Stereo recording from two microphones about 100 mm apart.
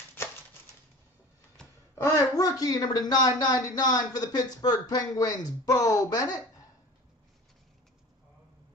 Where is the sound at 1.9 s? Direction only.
35° left (ahead or behind).